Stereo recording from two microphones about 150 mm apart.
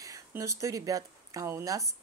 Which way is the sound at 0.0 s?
20° right (ahead or behind).